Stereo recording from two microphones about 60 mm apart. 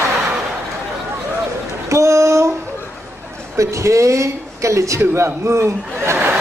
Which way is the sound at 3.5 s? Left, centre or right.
Right.